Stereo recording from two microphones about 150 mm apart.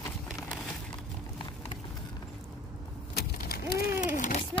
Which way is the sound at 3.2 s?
90° left.